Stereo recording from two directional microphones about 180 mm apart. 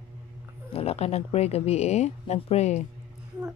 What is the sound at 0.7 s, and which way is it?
Speech, 35° left (ahead or behind).